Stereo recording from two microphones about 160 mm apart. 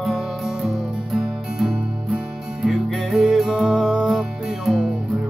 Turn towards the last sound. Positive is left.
turn(degrees=0)  # may be behind; listen again after turning